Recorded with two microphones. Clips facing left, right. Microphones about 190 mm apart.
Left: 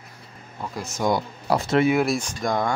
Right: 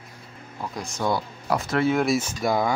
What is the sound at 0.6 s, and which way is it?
Speech, 5° left (ahead or behind).